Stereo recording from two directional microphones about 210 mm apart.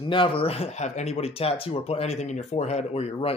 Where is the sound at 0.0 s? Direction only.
25° left (ahead or behind).